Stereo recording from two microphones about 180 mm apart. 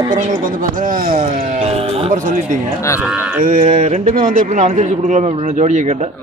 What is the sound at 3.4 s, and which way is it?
A man's voice, 45° right (ahead or behind).